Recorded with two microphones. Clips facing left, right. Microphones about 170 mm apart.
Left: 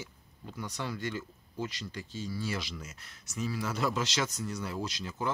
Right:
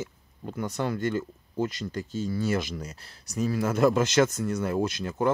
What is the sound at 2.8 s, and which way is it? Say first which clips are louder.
Speech: right 7 dB; 35° right (ahead or behind).